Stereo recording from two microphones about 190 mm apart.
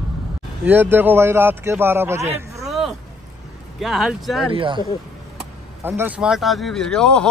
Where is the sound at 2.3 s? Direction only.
15° right (ahead or behind).